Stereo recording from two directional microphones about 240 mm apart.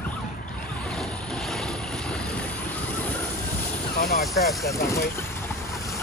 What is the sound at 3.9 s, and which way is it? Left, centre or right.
Vehicle, left.